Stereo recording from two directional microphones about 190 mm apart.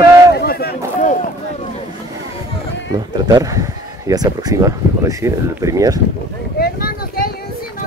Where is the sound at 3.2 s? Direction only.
20° right (ahead or behind).